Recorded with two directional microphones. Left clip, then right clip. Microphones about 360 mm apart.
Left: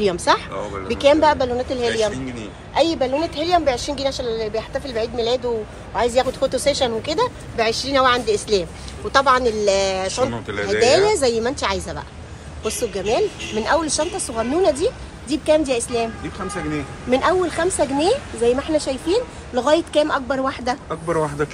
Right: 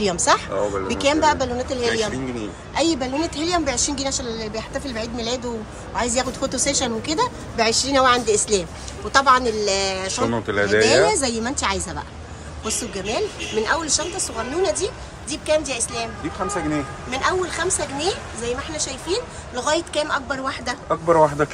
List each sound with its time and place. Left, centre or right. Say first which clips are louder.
0.0 s a woman's voice: left 1 dB; centre
10.3 s speech: right 5 dB; right
10.9 s a woman's voice: left 2 dB; centre
17.1 s a woman's voice: left 5 dB; centre
20.9 s speech: right 11 dB; right